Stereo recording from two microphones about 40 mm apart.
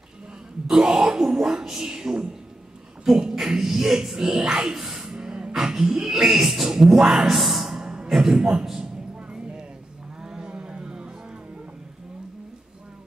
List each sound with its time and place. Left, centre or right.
0.7 s speech: centre
4.5 s music: centre
5.5 s speech: centre
7.8 s a sound: right
8.1 s speech: centre
9.3 s music: right
10.2 s a sound: centre